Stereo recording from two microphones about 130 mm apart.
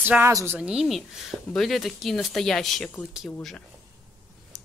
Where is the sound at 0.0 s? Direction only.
15° right (ahead or behind).